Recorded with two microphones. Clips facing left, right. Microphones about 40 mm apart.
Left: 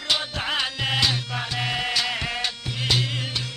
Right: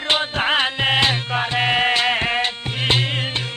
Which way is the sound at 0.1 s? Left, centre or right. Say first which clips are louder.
Right 6 dB; right.